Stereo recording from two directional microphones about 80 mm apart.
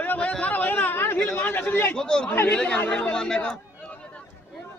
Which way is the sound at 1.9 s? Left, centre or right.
Centre.